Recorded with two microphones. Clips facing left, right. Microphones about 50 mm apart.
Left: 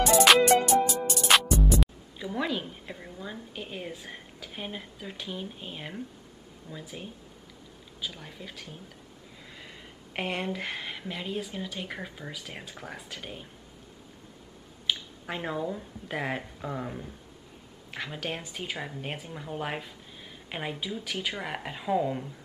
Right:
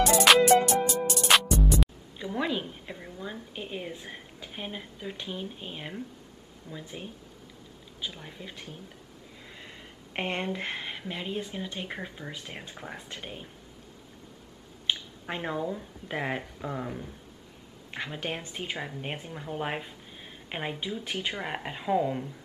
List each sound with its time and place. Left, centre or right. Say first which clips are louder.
0.1 s music: left 1 dB; centre
4.5 s a woman's voice: even; centre
12.3 s speech: even; centre
12.6 s speech: even; centre
15.0 s a woman's voice: even; centre